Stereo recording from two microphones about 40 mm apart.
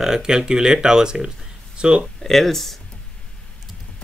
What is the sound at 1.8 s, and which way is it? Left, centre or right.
Speech, right.